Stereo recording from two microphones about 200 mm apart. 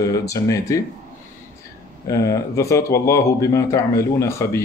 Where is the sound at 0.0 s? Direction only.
15° left (ahead or behind).